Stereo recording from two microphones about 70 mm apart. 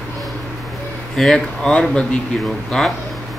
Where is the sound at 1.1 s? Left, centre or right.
Centre.